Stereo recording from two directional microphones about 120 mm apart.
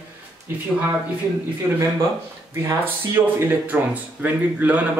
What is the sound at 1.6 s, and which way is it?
Speech, 15° right (ahead or behind).